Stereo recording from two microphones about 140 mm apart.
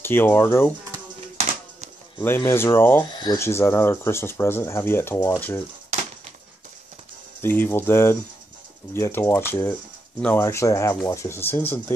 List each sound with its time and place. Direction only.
0.0 s speech: 15° left (ahead or behind)
2.2 s speech: 15° left (ahead or behind)
3.1 s a sound: 30° left (ahead or behind)
3.3 s speech: 20° left (ahead or behind)
7.4 s speech: 15° left (ahead or behind)